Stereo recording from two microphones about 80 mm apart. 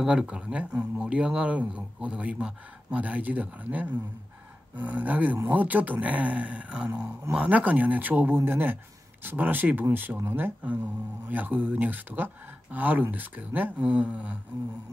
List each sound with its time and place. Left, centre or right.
0.0 s speech: centre